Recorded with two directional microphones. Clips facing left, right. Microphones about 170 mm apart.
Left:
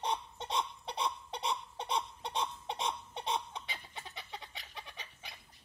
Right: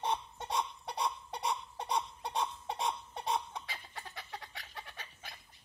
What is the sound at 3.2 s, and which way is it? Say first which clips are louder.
Chicken: right 1 dB; 20° left (ahead or behind).